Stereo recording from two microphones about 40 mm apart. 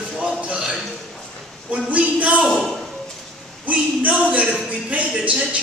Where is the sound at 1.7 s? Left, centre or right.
Right.